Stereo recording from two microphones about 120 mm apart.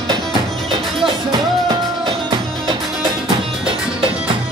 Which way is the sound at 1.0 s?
35° right (ahead or behind).